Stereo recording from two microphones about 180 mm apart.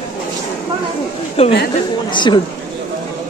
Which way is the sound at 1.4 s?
35° left (ahead or behind).